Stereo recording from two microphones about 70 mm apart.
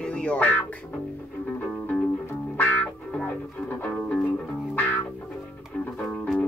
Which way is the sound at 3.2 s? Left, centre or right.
Left.